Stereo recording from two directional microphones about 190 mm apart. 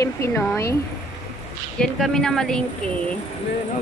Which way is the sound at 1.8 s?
5° left (ahead or behind).